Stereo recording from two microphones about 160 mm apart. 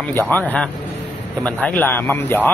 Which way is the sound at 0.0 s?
10° left (ahead or behind).